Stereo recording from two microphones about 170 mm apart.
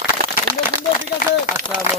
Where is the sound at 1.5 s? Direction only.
15° right (ahead or behind).